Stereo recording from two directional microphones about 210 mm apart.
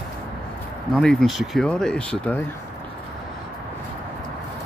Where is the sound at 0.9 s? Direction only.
Centre (ahead or behind).